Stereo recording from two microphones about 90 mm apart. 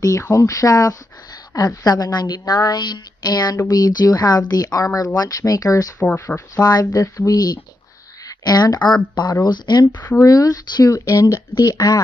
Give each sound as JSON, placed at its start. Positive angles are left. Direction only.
{"t": 0.3, "sound": "a woman's voice", "side_deg": 35}
{"t": 5.9, "sound": "speech", "side_deg": 15}
{"t": 6.5, "sound": "a woman's voice", "side_deg": 45}
{"t": 9.9, "sound": "speech", "side_deg": 20}
{"t": 10.2, "sound": "speech", "side_deg": 40}